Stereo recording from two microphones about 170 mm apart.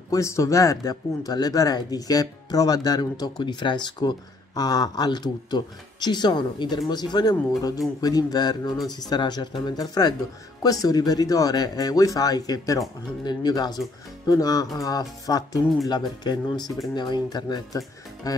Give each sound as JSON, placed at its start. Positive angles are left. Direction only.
{"t": 0.1, "sound": "speech", "side_deg": 15}
{"t": 16.5, "sound": "speech", "side_deg": 0}
{"t": 16.8, "sound": "speech", "side_deg": 25}